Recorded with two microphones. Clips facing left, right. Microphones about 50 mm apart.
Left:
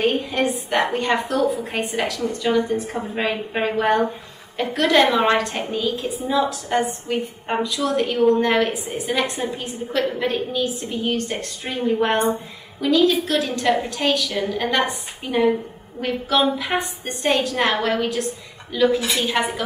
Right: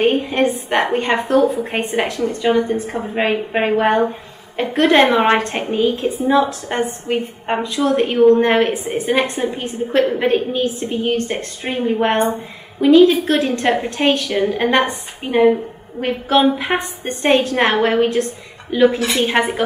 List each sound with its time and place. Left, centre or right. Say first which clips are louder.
0.0 s a woman's voice: right 5 dB; right
16.0 s a sound: right 5 dB; right
17.0 s a woman's voice: right 8 dB; right